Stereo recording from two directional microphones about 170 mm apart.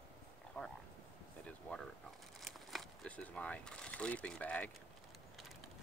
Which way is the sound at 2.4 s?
Centre (ahead or behind).